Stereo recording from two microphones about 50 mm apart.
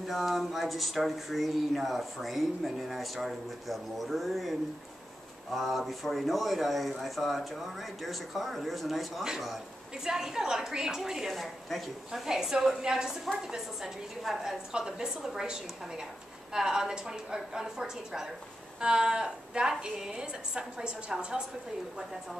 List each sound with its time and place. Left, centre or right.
0.1 s speech: centre
10.0 s a woman's voice: centre